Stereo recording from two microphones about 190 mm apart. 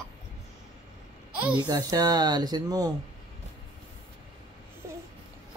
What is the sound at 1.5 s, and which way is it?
A child's voice, 20° right (ahead or behind).